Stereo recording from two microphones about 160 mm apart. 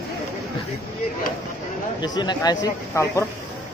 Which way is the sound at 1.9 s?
25° left (ahead or behind).